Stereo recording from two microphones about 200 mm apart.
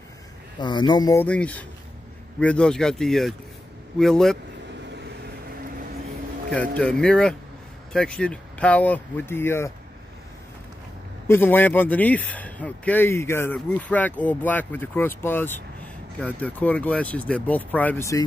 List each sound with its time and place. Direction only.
0.6 s speech: 20° left (ahead or behind)
1.2 s a man's voice: 5° left (ahead or behind)
6.5 s a man's voice: 5° left (ahead or behind)
11.2 s a man's voice: 10° left (ahead or behind)